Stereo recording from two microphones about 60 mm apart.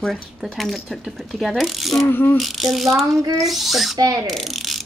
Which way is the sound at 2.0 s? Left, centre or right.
Left.